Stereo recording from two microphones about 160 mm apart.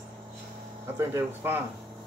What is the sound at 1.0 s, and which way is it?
Speech, 15° right (ahead or behind).